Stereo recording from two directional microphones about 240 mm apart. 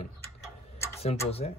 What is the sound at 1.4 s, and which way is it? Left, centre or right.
Speech, left.